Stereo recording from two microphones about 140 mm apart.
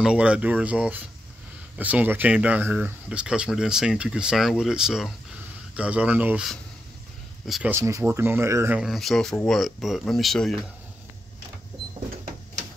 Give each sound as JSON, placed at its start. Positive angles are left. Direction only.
{"t": 0.0, "sound": "speech", "side_deg": -5}
{"t": 7.4, "sound": "speech", "side_deg": 0}
{"t": 7.7, "sound": "speech", "side_deg": -20}
{"t": 8.8, "sound": "speech", "side_deg": 0}